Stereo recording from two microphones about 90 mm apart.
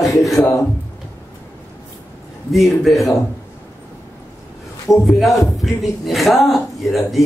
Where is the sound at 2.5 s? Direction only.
Centre (ahead or behind).